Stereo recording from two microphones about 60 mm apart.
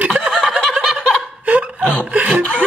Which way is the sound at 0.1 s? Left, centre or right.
Centre.